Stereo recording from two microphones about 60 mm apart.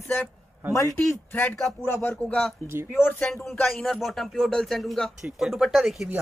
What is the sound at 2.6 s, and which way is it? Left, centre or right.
Speech, right.